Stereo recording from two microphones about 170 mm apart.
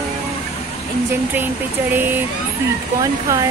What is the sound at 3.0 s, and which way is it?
Speech, 20° right (ahead or behind).